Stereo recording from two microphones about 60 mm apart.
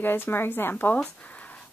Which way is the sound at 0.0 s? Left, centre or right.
Left.